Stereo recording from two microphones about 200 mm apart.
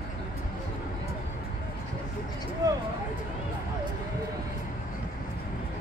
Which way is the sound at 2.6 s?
20° right (ahead or behind).